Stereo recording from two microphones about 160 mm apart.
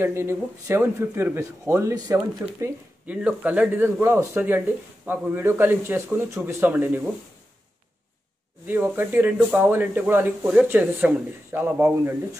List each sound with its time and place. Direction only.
0.0 s speech: 15° right (ahead or behind)
8.6 s speech: 10° right (ahead or behind)